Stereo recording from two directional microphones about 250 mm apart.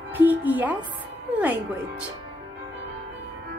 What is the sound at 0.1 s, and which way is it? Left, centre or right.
Music, centre.